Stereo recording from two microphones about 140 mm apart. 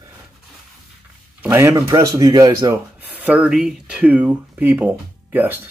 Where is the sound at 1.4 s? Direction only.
15° right (ahead or behind).